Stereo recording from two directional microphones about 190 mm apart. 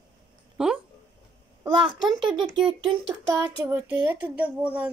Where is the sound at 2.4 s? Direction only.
25° right (ahead or behind).